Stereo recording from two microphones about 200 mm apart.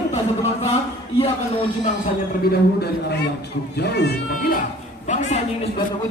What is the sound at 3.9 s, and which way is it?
Speech, 55° left (ahead or behind).